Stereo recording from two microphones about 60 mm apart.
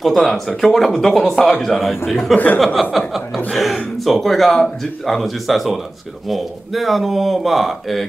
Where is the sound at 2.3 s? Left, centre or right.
Left.